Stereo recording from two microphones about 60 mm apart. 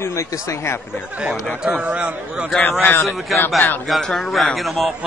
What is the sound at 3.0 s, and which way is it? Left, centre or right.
Speech, left.